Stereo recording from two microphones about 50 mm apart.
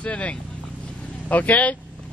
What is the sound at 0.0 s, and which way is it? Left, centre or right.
Speech, left.